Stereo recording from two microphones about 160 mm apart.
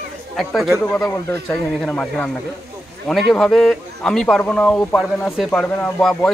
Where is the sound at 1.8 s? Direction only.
5° left (ahead or behind).